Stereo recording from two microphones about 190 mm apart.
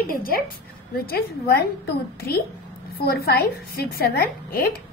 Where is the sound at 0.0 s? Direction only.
50° left (ahead or behind).